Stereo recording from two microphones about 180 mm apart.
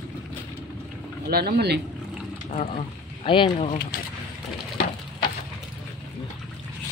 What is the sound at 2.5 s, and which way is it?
Speech, 35° left (ahead or behind).